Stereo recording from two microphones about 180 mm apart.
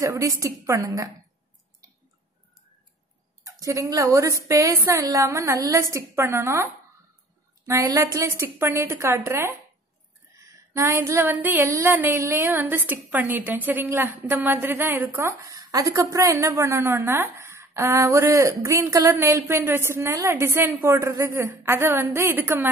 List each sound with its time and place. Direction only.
0.0 s female singing: 20° right (ahead or behind)
3.4 s female singing: 20° right (ahead or behind)